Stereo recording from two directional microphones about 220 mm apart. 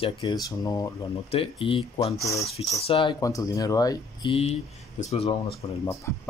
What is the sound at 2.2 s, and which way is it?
Speech, 15° left (ahead or behind).